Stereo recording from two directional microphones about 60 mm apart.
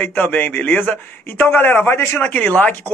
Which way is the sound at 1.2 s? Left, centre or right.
Left.